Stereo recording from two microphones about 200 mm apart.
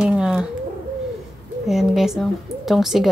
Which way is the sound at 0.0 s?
5° right (ahead or behind).